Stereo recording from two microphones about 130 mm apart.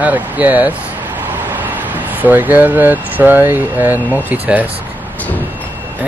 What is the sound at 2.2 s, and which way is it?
Speech, 15° right (ahead or behind).